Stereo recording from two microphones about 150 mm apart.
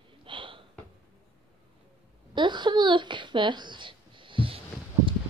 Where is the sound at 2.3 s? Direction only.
30° right (ahead or behind).